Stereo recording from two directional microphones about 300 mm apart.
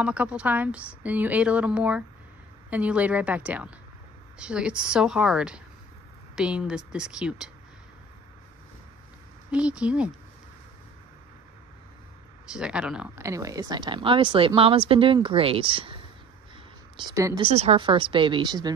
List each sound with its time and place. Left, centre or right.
0.0 s a woman's voice: centre
9.5 s a woman's voice: centre
12.4 s speech: centre